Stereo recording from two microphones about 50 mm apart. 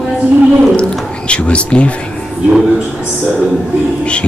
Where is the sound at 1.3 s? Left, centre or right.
Left.